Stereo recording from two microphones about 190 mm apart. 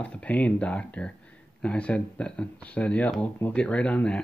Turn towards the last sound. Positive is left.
turn(degrees=5)  # may be behind; listen again after turning